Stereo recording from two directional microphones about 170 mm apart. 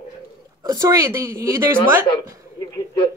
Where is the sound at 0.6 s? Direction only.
20° right (ahead or behind).